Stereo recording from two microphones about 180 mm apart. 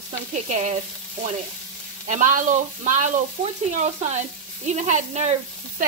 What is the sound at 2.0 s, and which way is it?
Speech, 45° right (ahead or behind).